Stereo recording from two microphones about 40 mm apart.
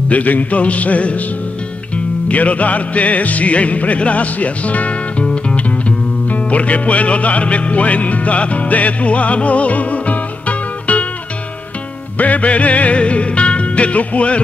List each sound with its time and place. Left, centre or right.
0.1 s music: left
2.2 s music: left
5.2 s music: left
5.6 s music: left
12.2 s music: left